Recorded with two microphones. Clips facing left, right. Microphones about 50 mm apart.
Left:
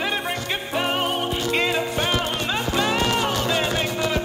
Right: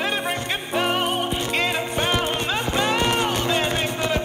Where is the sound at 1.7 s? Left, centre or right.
Right.